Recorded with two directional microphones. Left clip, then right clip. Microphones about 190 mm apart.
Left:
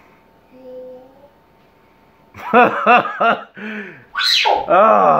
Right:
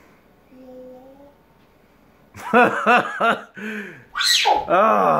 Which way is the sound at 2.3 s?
5° right (ahead or behind).